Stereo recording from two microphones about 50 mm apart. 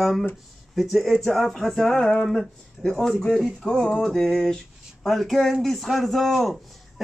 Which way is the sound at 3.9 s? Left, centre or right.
Centre.